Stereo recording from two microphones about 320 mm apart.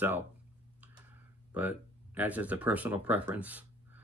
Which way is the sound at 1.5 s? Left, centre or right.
Centre.